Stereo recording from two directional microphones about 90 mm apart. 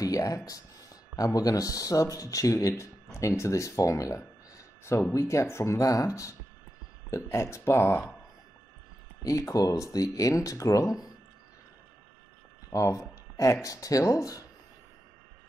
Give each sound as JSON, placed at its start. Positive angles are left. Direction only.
{"t": 0.0, "sound": "a sound", "side_deg": 40}
{"t": 0.5, "sound": "speech", "side_deg": 40}
{"t": 9.2, "sound": "speech", "side_deg": 40}
{"t": 12.7, "sound": "speech", "side_deg": 35}